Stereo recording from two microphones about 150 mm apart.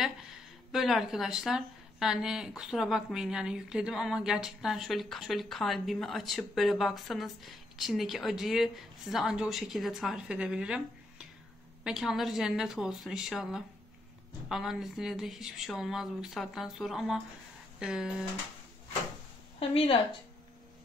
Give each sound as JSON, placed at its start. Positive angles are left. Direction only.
{"t": 0.7, "sound": "speech", "side_deg": 0}
{"t": 19.6, "sound": "a woman's voice", "side_deg": 40}